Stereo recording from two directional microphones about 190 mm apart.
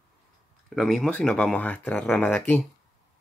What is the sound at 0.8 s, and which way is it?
Speech, centre (ahead or behind).